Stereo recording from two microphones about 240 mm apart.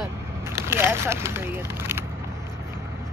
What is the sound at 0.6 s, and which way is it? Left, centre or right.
Speech, centre.